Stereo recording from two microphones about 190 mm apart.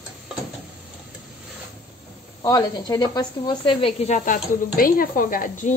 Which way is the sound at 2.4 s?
20° left (ahead or behind).